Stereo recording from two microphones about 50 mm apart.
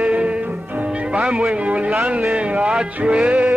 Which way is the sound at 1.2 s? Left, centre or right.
Centre.